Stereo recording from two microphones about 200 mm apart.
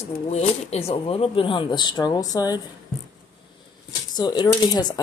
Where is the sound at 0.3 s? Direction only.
30° left (ahead or behind).